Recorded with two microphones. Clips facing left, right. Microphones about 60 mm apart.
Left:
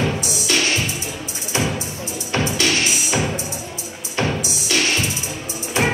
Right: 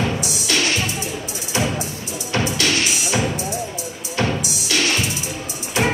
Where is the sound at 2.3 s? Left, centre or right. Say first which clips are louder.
Even; left.